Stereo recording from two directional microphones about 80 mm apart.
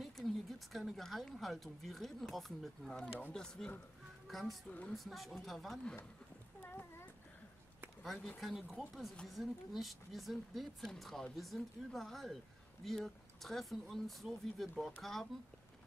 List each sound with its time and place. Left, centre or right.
0.0 s speech: centre
4.6 s speech: centre
4.9 s speech: centre
6.6 s a sound: left
8.0 s speech: centre